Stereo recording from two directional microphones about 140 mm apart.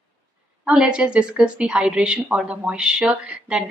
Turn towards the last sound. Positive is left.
turn(degrees=-5)  # may be behind; listen again after turning